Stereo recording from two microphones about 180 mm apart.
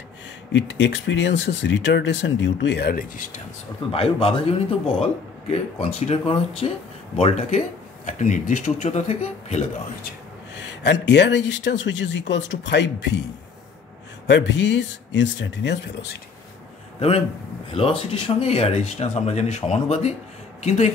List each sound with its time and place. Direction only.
0.5 s speech: 80° left; by 3.3 s 55° left (ahead or behind)
3.9 s speech: 30° left (ahead or behind)
10.7 s speech: 75° left (ahead or behind)
14.2 s speech: 80° left
17.7 s speech: 30° left (ahead or behind)